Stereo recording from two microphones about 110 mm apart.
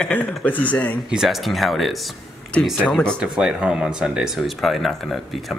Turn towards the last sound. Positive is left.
turn(degrees=0)  # may be behind; listen again after turning